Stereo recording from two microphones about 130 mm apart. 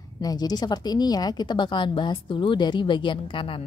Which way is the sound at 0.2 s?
30° left (ahead or behind).